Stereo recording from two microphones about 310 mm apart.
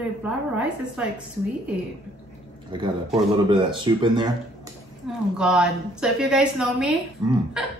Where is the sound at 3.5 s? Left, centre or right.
Centre.